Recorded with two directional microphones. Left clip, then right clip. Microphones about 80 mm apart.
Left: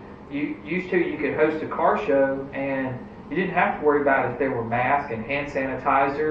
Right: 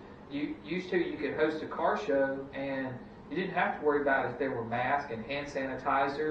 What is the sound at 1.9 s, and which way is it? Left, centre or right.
Speech, right.